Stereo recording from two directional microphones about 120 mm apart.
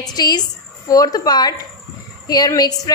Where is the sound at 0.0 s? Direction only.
35° left (ahead or behind).